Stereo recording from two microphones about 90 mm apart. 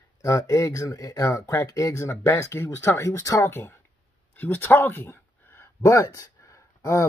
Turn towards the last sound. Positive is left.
turn(degrees=35)  # may be behind; listen again after turning